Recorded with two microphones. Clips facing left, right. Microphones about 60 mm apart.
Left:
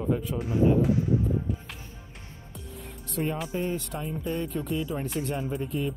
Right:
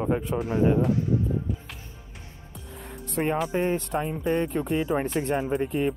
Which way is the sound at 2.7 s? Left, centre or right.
Right.